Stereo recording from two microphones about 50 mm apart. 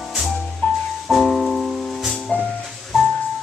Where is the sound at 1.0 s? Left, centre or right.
Centre.